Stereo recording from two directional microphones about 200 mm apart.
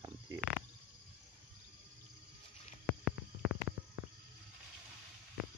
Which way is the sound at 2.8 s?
Centre (ahead or behind).